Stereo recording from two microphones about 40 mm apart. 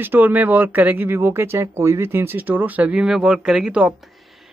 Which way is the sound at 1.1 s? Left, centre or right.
Right.